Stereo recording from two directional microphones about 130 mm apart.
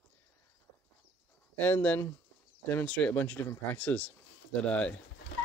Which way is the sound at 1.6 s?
15° left (ahead or behind).